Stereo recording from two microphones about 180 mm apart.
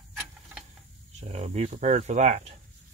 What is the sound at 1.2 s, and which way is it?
Speech, 35° right (ahead or behind).